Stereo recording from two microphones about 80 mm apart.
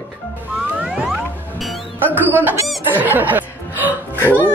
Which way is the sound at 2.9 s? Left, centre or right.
Right.